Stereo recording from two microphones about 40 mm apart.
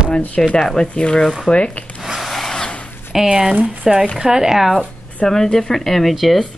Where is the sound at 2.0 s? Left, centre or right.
Centre.